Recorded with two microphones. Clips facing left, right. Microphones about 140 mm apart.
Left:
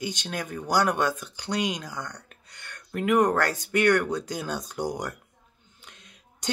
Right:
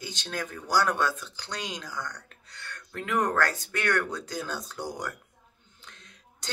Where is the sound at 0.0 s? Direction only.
15° left (ahead or behind).